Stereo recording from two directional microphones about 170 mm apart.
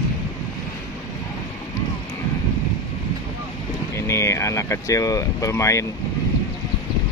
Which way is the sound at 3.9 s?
15° left (ahead or behind).